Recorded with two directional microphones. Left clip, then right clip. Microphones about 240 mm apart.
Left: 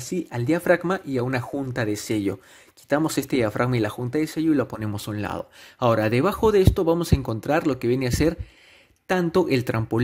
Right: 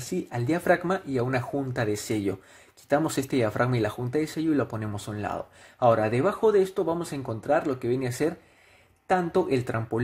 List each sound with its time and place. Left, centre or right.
0.3 s speech: left